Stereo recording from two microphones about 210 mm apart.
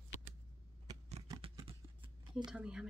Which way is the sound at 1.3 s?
20° right (ahead or behind).